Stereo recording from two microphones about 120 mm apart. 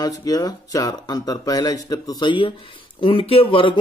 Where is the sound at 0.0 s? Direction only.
30° left (ahead or behind).